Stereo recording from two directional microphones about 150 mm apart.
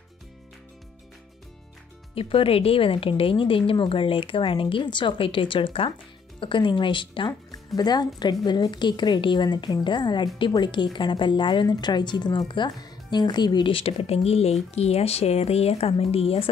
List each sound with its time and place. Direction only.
2.1 s speech: 40° left (ahead or behind)